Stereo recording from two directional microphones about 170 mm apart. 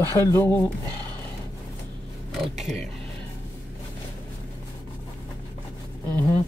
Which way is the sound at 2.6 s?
Centre (ahead or behind).